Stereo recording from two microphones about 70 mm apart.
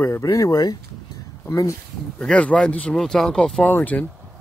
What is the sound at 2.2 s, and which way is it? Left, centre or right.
Speech, centre.